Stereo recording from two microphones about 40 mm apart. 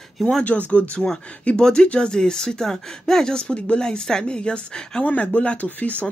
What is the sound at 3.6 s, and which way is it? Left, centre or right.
Speech, left.